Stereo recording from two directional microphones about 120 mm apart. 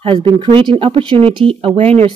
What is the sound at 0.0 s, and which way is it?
Speech, 45° right (ahead or behind).